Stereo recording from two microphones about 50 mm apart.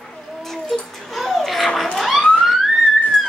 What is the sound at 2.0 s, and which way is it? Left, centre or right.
Police car, centre.